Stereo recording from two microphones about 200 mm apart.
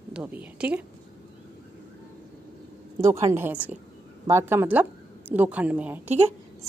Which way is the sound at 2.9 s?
15° right (ahead or behind).